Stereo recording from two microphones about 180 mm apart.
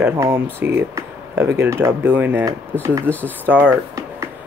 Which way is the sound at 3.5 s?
10° right (ahead or behind).